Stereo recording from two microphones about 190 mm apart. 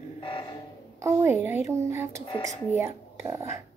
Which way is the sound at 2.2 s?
30° left (ahead or behind).